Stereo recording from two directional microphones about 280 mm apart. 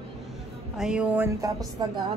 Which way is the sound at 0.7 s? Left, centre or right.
Centre.